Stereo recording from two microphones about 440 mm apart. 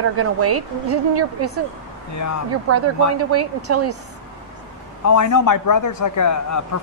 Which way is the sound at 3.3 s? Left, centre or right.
Right.